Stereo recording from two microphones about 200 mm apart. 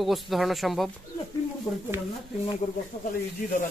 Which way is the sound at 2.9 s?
45° left (ahead or behind).